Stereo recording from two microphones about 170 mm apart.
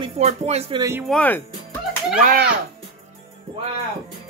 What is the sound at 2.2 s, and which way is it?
Speech, 65° right (ahead or behind).